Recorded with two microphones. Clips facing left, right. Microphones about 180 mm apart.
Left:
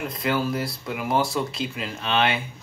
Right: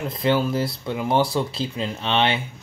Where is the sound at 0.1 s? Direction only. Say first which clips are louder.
Right 5 dB; 25° right (ahead or behind).